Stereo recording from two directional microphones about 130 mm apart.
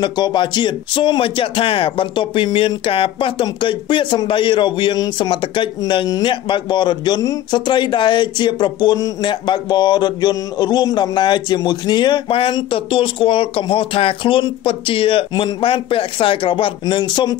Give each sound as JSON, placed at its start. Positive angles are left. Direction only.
{"t": 0.0, "sound": "speech", "side_deg": 35}